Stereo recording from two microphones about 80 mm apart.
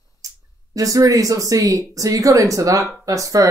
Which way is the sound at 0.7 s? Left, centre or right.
Right.